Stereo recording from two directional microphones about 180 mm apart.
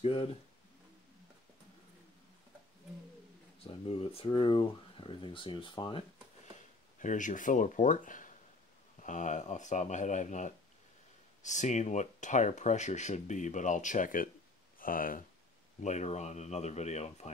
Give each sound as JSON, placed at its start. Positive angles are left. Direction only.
{"t": 0.0, "sound": "speech", "side_deg": 30}
{"t": 3.6, "sound": "speech", "side_deg": 30}
{"t": 6.5, "sound": "speech", "side_deg": 45}
{"t": 15.8, "sound": "speech", "side_deg": 40}